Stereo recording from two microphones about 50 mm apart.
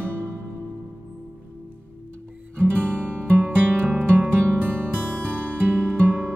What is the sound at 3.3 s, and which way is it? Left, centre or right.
Music, right.